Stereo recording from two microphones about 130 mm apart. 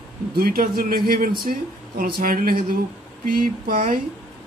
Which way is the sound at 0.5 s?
90° right.